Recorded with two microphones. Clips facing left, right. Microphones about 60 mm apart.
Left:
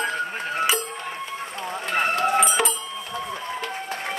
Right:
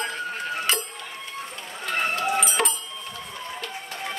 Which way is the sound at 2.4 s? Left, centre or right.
Centre.